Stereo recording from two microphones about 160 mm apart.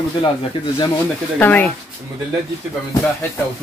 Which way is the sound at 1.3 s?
10° left (ahead or behind).